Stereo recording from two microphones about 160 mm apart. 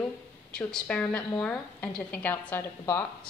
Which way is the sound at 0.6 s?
5° left (ahead or behind).